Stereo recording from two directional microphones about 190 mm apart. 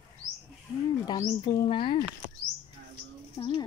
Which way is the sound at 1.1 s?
20° left (ahead or behind).